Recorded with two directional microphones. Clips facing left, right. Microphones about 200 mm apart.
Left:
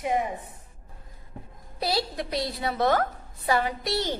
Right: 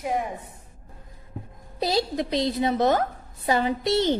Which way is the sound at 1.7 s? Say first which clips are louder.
Right 4 dB; 20° right (ahead or behind).